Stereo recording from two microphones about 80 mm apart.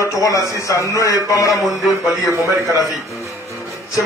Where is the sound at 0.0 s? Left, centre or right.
Left.